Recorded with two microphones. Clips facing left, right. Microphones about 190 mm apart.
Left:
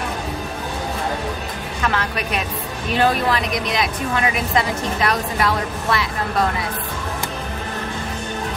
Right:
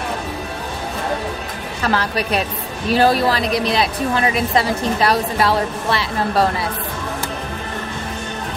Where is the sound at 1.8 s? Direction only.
35° right (ahead or behind).